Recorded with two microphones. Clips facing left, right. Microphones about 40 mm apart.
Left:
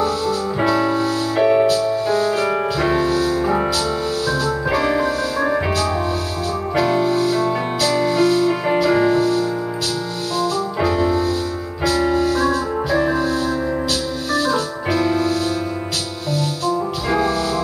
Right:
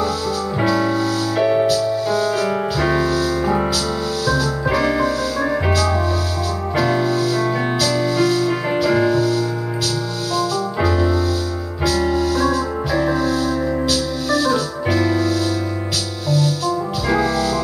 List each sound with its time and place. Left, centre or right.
0.9 s music: left
1.4 s music: centre
1.7 s music: left
2.5 s music: centre
7.1 s music: left
11.8 s keyboard: left
14.3 s organ: left
16.3 s music: left